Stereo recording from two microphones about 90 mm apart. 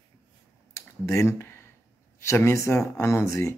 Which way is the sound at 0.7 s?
30° left (ahead or behind).